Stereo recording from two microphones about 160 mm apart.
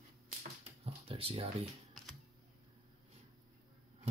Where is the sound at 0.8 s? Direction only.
35° right (ahead or behind).